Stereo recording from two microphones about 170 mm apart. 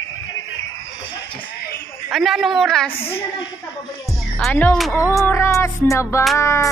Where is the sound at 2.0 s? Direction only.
Centre (ahead or behind).